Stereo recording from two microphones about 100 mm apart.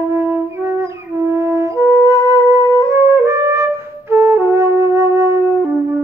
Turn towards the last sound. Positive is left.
turn(degrees=-30)  # may be behind; listen again after turning